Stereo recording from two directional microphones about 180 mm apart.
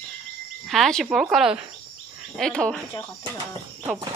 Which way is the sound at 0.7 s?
Centre (ahead or behind).